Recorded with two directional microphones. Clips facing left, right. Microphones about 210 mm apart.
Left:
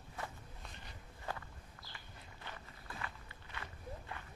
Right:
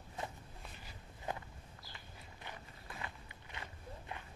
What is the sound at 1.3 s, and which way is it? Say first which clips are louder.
Walk: right 2 dB; 20° right (ahead or behind).